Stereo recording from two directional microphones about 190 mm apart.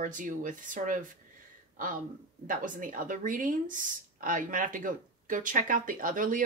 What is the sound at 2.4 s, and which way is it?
Speech, 45° right (ahead or behind).